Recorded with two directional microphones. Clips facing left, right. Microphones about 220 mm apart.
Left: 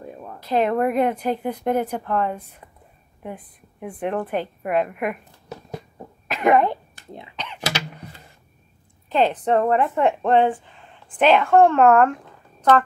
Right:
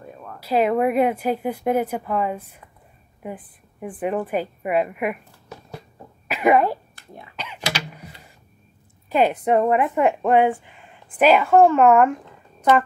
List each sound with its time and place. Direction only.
0.4 s a woman's voice: 5° right (ahead or behind)
6.2 s speech: 5° right (ahead or behind)
7.0 s whispering: 20° left (ahead or behind)
7.3 s a sound: 5° right (ahead or behind)
9.1 s a woman's voice: 10° right (ahead or behind)